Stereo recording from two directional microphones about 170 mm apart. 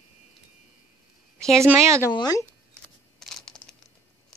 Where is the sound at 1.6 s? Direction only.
15° right (ahead or behind).